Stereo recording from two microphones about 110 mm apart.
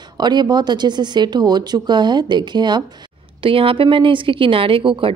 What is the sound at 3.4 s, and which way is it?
A woman's voice, 55° right (ahead or behind).